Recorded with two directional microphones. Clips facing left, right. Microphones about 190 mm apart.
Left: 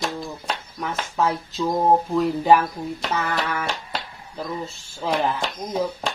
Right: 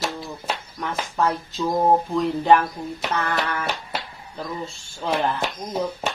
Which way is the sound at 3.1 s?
5° left (ahead or behind).